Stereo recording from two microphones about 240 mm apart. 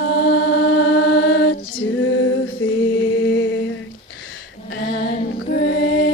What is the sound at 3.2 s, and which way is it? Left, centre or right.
Mantra, left.